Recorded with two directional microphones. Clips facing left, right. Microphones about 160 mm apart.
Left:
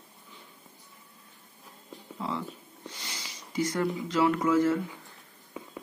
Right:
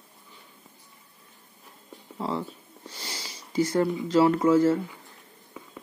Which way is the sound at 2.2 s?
35° right (ahead or behind).